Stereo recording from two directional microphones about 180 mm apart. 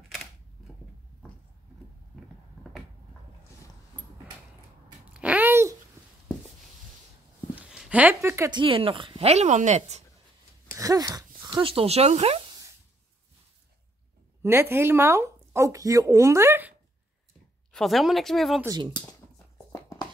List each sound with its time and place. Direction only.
5.1 s a sound: 5° right (ahead or behind)
7.5 s speech: 10° right (ahead or behind); by 10.0 s 40° right (ahead or behind)
10.8 s a sound: 20° right (ahead or behind)
11.5 s speech: 30° right (ahead or behind)
14.4 s speech: 15° right (ahead or behind)
17.7 s speech: centre (ahead or behind)
18.9 s dog: 15° left (ahead or behind)